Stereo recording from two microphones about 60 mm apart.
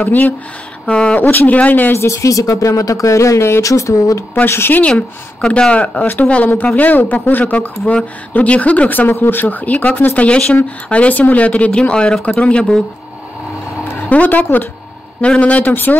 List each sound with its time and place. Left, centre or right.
0.0 s speech: left
1.2 s speech: left
2.0 s speech: left
4.5 s speech: left
4.7 s speech: left
14.0 s speech: left